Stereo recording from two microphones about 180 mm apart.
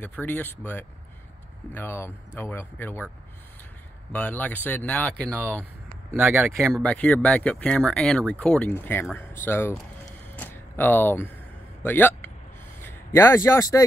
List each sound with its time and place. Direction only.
0.0 s speech: 10° left (ahead or behind)
4.1 s speech: 10° left (ahead or behind)
5.4 s speech: 10° right (ahead or behind)
6.7 s speech: 5° left (ahead or behind)
10.2 s a sound: 10° left (ahead or behind)
11.8 s a man's voice: 10° left (ahead or behind)